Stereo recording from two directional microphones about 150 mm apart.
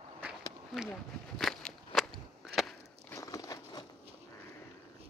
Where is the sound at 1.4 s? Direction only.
5° left (ahead or behind).